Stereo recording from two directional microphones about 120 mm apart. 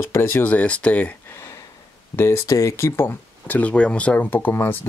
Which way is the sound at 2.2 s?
25° left (ahead or behind).